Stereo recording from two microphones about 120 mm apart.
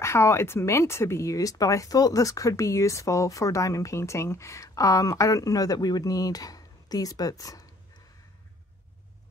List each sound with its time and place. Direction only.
0.0 s speech: 20° left (ahead or behind)